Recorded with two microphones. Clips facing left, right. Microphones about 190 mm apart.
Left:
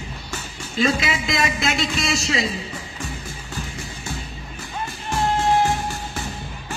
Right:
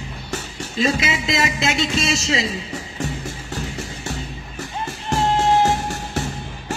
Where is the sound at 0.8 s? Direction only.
25° right (ahead or behind).